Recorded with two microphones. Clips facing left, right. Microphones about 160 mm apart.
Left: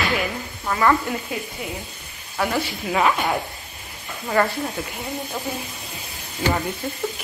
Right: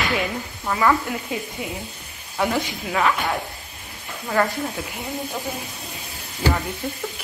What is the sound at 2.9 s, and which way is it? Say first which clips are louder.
Speech: left 1 dB; 15° left (ahead or behind).